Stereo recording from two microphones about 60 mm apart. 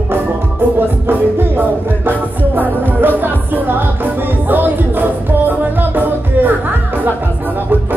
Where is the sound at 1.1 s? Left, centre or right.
Right.